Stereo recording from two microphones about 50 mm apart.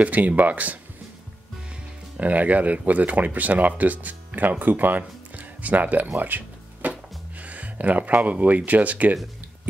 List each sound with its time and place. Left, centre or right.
0.0 s speech: right
2.1 s speech: right
6.1 s music: right
7.3 s speech: right